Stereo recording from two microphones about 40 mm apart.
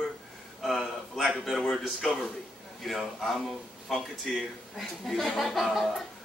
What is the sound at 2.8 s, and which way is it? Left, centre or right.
A man's voice, centre.